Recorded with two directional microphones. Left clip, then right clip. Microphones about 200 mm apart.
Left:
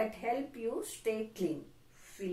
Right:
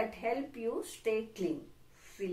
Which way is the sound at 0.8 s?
Centre (ahead or behind).